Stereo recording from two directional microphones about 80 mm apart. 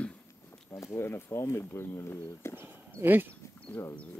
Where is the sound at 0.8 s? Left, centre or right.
Left.